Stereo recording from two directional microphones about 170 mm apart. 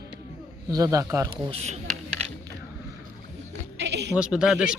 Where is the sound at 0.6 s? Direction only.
20° right (ahead or behind).